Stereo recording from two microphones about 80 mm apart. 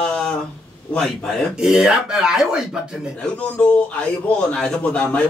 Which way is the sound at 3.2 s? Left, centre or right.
Centre.